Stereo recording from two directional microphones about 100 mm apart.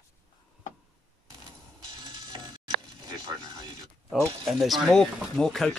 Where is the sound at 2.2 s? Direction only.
40° right (ahead or behind).